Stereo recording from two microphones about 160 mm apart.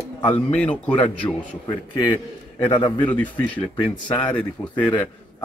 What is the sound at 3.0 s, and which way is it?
Speech, 10° left (ahead or behind).